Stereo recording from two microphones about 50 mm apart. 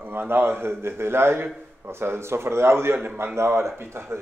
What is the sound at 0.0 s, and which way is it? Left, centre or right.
A man's voice, right.